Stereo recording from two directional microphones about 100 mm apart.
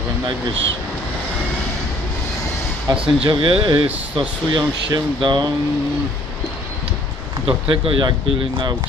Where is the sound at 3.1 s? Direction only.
55° right (ahead or behind).